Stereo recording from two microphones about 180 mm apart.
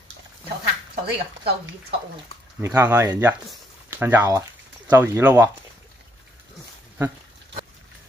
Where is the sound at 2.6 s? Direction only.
15° right (ahead or behind).